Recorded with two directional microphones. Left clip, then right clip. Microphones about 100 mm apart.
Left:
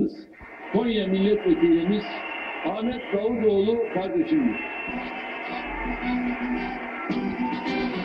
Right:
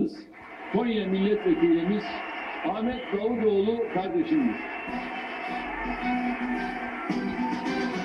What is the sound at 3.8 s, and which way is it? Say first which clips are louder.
Speech: left 2 dB; 35° right (ahead or behind).